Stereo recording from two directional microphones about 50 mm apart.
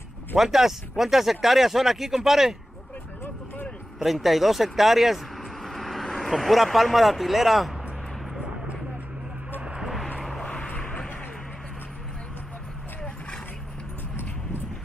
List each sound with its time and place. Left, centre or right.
0.4 s speech: centre
4.0 s speech: centre
10.4 s vehicle: left